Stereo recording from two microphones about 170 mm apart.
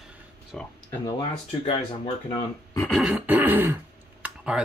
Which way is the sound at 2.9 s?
5° right (ahead or behind).